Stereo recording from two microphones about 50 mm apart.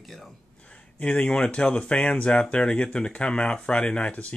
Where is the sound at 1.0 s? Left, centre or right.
Left.